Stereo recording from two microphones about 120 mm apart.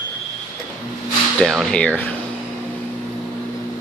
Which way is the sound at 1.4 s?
Centre (ahead or behind).